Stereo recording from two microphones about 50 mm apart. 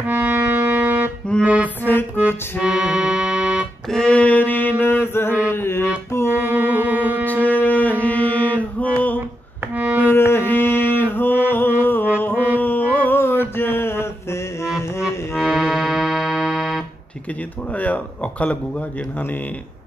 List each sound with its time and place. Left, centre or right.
0.1 s music: right
2.6 s accordion: right
4.1 s mantra: left
6.3 s music: right
7.2 s mantra: left
9.8 s music: right
10.1 s mantra: left
12.5 s carnatic music: left
13.2 s mantra: left
15.0 s music: centre
17.7 s a sound: left